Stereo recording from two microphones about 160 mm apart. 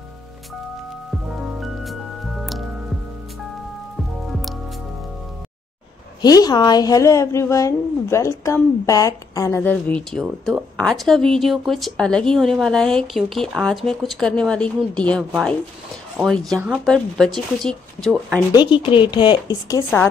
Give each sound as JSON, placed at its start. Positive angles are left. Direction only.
{"t": 1.3, "sound": "music", "side_deg": 0}
{"t": 6.2, "sound": "speech", "side_deg": 25}
{"t": 9.6, "sound": "a woman's voice", "side_deg": 10}
{"t": 18.5, "sound": "speech", "side_deg": 30}